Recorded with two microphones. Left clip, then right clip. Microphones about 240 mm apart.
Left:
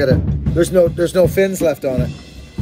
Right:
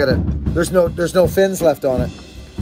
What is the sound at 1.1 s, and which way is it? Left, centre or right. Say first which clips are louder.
Speech: right 1 dB; right.